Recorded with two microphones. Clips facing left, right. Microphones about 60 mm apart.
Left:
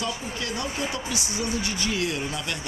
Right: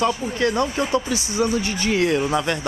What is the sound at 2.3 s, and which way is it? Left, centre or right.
Speech, right.